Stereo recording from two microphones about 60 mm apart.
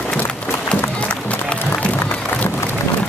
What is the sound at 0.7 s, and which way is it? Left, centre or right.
Music, centre.